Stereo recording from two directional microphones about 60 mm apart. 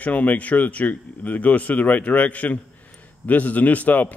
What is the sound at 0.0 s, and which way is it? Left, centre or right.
A man's voice, left.